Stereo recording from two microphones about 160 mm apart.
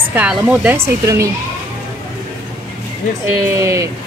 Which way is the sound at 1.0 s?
20° right (ahead or behind).